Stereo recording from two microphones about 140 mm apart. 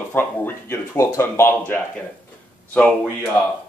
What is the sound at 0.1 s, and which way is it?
Speech, 15° left (ahead or behind).